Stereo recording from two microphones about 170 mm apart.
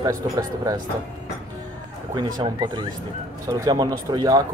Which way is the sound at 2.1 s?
25° right (ahead or behind).